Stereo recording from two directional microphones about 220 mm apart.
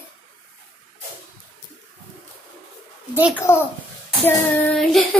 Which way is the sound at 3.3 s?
10° left (ahead or behind).